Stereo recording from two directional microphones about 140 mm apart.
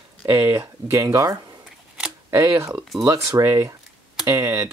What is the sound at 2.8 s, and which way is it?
Speech, centre (ahead or behind).